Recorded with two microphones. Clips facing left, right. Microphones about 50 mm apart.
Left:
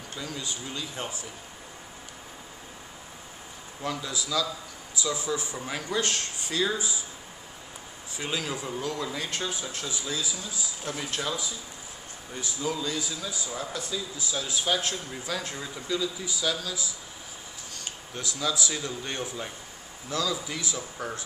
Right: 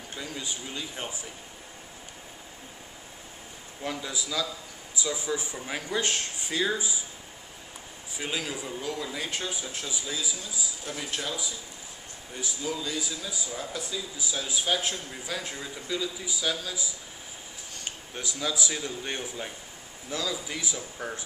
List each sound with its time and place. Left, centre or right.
0.1 s a man's voice: centre
3.8 s a man's voice: centre
8.2 s a man's voice: centre
12.4 s a man's voice: centre
18.1 s a man's voice: centre